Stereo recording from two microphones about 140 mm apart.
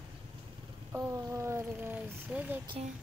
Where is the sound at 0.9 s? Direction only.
20° right (ahead or behind).